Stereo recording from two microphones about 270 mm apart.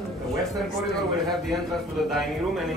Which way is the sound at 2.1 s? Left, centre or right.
Centre.